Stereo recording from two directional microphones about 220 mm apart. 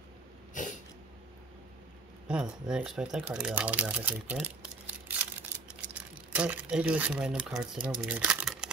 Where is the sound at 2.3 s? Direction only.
5° right (ahead or behind).